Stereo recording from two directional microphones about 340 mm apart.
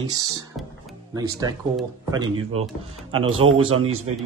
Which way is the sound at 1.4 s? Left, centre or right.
Centre.